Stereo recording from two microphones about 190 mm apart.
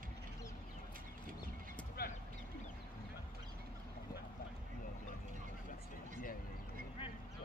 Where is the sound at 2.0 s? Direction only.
55° left (ahead or behind).